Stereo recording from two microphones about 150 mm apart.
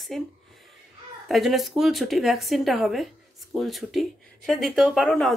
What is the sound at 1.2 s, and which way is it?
Speech, centre (ahead or behind).